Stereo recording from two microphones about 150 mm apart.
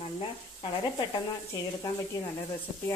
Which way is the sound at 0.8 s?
30° left (ahead or behind).